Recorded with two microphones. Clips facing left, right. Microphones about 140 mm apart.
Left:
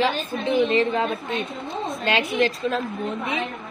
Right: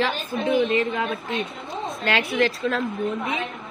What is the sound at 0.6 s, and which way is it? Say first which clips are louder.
Speech: left 2 dB; 30° left (ahead or behind).